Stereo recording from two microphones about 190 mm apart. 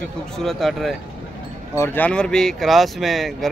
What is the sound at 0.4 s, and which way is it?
Speech, centre (ahead or behind).